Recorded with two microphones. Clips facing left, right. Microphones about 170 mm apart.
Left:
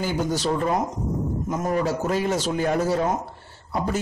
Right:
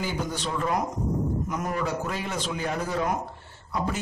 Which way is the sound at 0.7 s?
25° left (ahead or behind).